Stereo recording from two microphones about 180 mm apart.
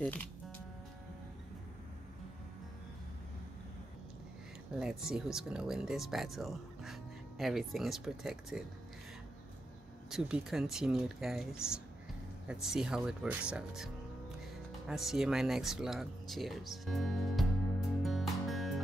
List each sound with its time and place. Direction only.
4.7 s speech: 5° right (ahead or behind)
10.0 s speech: 5° right (ahead or behind)
14.9 s speech: centre (ahead or behind)
18.0 s music: centre (ahead or behind)